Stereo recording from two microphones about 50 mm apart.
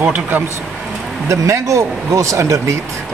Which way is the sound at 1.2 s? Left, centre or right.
Right.